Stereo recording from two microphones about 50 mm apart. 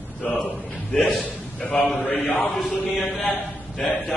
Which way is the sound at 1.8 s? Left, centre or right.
Centre.